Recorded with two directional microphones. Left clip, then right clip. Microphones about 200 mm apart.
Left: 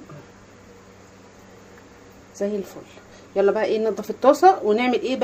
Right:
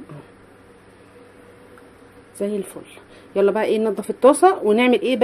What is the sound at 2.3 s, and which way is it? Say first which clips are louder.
Speech: right 1 dB; 25° right (ahead or behind).